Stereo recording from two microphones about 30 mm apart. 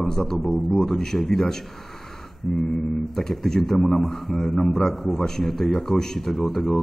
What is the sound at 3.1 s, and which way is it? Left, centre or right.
A man's voice, centre.